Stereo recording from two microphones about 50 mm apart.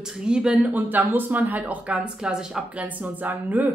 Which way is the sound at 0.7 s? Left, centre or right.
Right.